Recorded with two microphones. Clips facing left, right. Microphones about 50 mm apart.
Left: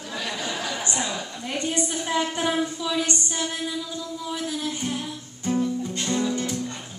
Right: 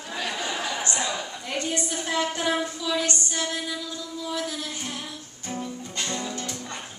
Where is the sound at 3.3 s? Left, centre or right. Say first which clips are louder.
Left 1 dB; centre.